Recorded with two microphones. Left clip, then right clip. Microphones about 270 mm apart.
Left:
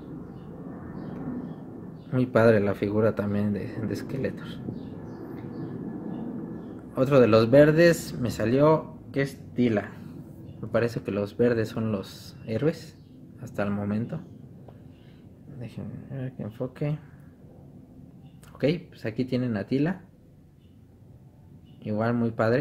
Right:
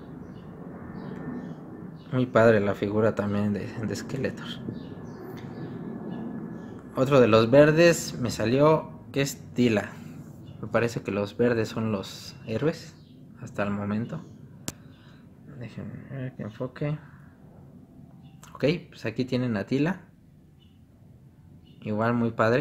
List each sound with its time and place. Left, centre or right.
2.0 s a man's voice: centre
6.9 s a man's voice: centre
15.6 s a man's voice: centre
18.6 s speech: centre
21.8 s a man's voice: centre